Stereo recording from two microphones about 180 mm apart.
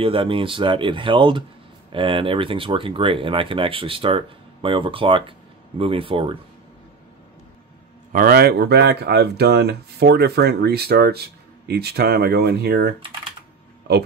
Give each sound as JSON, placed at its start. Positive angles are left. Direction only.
{"t": 0.0, "sound": "speech", "side_deg": -30}
{"t": 8.1, "sound": "speech", "side_deg": -55}